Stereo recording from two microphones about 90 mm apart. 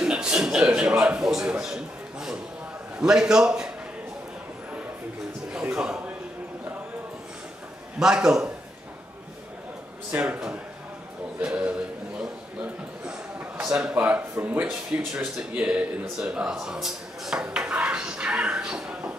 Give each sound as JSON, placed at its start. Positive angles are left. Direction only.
{"t": 0.0, "sound": "a sound", "side_deg": -10}
{"t": 3.0, "sound": "a man's voice", "side_deg": -5}
{"t": 5.5, "sound": "a sound", "side_deg": -10}
{"t": 8.0, "sound": "speech", "side_deg": -5}
{"t": 10.1, "sound": "speech", "side_deg": -15}
{"t": 13.6, "sound": "speech", "side_deg": -10}